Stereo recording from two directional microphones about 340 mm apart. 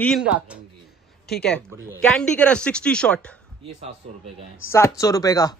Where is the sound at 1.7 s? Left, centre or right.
Centre.